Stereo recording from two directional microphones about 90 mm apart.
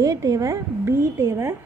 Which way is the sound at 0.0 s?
40° right (ahead or behind).